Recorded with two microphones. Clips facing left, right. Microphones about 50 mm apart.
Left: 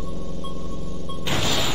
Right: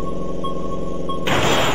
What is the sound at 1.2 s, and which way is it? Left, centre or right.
Music, right.